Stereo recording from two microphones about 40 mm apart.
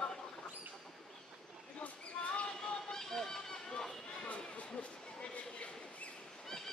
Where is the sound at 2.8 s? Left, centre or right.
Centre.